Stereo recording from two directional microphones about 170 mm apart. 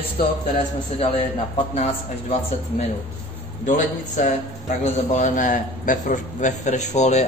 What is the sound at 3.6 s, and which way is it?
A man's voice, 45° left (ahead or behind).